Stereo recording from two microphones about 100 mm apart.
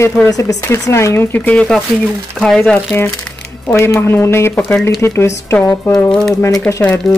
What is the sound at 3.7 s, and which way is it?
Speech, 25° left (ahead or behind).